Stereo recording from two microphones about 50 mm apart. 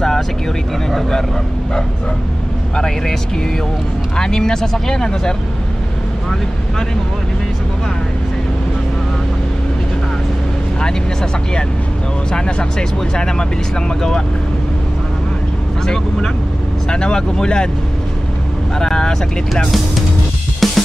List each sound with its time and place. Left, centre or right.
2.7 s speech: centre
4.2 s speech: centre
12.3 s speech: centre
16.9 s speech: centre
18.8 s vehicle: centre
20.6 s drum kit: centre